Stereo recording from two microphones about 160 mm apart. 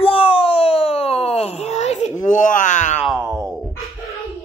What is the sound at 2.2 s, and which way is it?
Groan, 55° left (ahead or behind).